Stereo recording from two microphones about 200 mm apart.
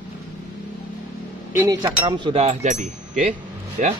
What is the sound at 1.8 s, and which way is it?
Speech, 25° right (ahead or behind).